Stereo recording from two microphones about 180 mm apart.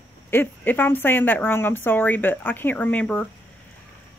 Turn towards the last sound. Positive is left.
turn(degrees=5)  # may be behind; listen again after turning